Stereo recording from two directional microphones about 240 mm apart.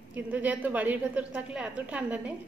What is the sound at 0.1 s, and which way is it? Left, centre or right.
A woman's voice, centre.